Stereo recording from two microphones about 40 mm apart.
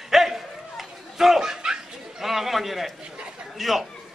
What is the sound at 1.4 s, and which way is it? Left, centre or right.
Chuckle, centre.